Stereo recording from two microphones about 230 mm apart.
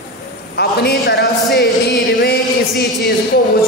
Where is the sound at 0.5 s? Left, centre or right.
Left.